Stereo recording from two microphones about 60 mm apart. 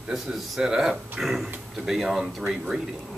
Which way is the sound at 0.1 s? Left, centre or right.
Centre.